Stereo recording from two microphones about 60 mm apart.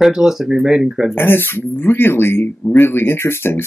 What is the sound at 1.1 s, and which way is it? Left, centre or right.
Speech, left.